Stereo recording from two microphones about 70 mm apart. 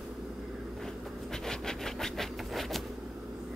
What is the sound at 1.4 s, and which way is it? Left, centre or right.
Rub, centre.